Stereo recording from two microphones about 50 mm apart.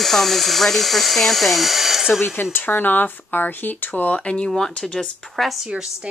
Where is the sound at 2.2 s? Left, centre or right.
Left.